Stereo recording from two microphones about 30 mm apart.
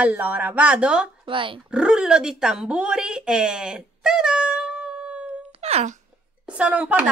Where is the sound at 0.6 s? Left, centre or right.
Right.